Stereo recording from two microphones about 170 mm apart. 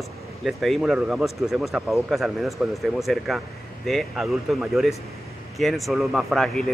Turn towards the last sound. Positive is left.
turn(degrees=0)  # may be behind; listen again after turning